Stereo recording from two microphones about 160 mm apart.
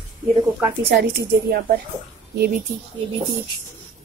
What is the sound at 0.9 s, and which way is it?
Speech, 85° right.